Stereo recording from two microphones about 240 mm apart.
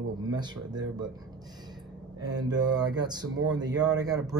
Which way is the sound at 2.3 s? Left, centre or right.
Centre.